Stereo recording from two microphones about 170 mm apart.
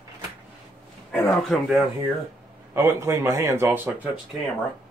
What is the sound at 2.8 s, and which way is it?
Speech, 15° right (ahead or behind).